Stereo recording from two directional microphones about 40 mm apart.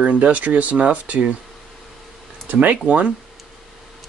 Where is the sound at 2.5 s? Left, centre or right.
Right.